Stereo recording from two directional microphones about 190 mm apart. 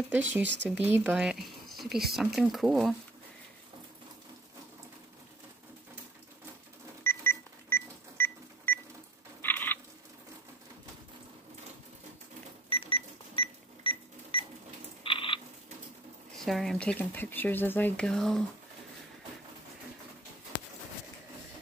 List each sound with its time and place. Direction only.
0.4 s speech: 70° right (ahead or behind)
0.7 s speech: 10° right (ahead or behind)
7.0 s cash register: 10° left (ahead or behind)
9.4 s frog: 10° left (ahead or behind)
12.6 s cash register: 30° left (ahead or behind)
15.0 s frog: 25° left (ahead or behind)
16.4 s speech: centre (ahead or behind)